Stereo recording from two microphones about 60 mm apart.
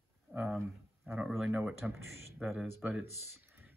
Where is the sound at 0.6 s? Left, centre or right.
Right.